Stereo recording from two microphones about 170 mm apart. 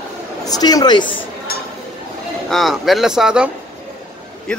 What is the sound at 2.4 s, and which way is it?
Speech, centre (ahead or behind).